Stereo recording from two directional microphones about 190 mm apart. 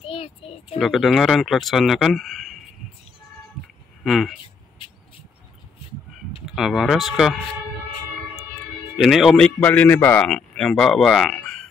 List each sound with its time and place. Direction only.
0.0 s a sound: 30° left (ahead or behind)
0.7 s speech: centre (ahead or behind)
4.0 s speech: centre (ahead or behind)
6.5 s speech: centre (ahead or behind)
8.9 s speech: centre (ahead or behind)